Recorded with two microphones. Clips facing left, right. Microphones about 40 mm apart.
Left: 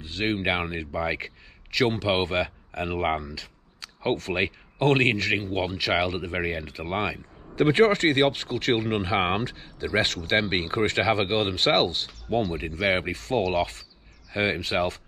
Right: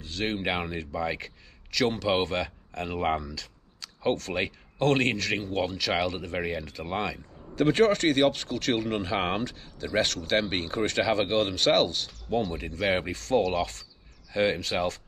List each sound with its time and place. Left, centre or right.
0.0 s speech: centre